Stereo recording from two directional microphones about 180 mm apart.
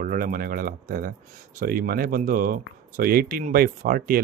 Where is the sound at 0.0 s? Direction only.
50° right (ahead or behind).